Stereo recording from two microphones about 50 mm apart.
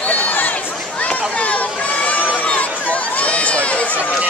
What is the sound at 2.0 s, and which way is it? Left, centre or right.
Run, left.